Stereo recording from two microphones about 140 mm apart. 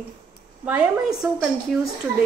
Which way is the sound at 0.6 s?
10° right (ahead or behind).